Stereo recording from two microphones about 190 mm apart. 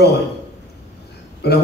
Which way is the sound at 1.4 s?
60° left (ahead or behind).